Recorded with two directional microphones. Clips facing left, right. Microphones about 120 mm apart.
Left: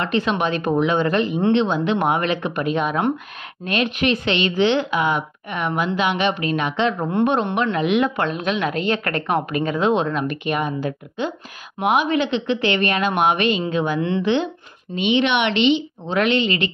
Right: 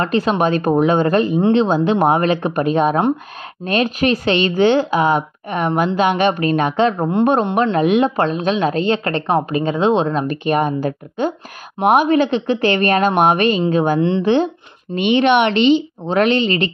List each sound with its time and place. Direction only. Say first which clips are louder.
0.0 s speech: right 4 dB; 40° right (ahead or behind)
7.0 s speech: right 3 dB; 20° right (ahead or behind)
7.7 s a woman's voice: right 4 dB; 35° right (ahead or behind)
15.0 s speech: right 5 dB; 50° right (ahead or behind)